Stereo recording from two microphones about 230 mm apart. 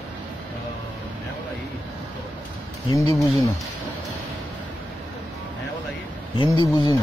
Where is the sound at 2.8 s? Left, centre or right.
Centre.